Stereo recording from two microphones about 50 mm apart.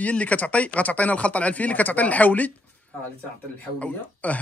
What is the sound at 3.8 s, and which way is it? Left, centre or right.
Speech, left.